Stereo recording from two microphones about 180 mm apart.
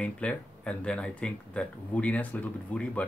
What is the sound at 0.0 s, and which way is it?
Speech, 5° left (ahead or behind).